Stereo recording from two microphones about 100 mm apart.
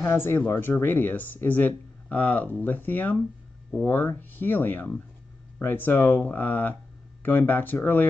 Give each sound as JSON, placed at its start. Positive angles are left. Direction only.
{"t": 0.0, "sound": "speech", "side_deg": 25}